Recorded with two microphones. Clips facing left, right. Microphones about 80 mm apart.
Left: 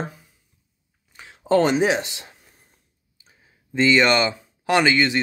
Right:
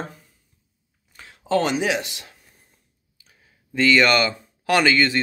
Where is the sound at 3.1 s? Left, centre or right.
Left.